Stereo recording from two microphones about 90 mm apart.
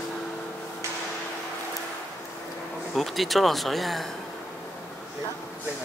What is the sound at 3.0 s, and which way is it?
Speech, centre (ahead or behind).